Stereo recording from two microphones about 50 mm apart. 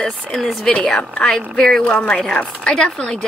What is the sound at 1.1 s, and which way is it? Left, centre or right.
A woman's voice, centre.